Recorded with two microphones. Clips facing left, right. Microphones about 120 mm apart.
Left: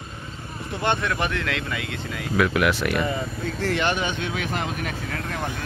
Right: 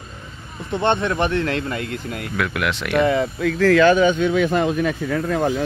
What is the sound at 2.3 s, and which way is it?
Speech, centre (ahead or behind).